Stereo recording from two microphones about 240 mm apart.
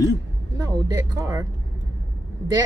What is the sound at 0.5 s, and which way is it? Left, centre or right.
Speech, centre.